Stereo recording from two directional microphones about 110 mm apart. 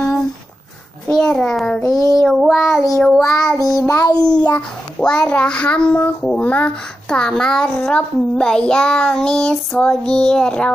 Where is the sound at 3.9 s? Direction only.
35° left (ahead or behind).